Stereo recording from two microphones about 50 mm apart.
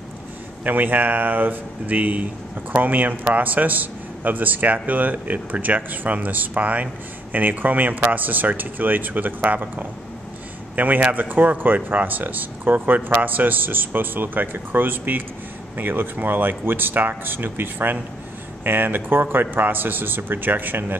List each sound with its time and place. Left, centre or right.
0.7 s a man's voice: right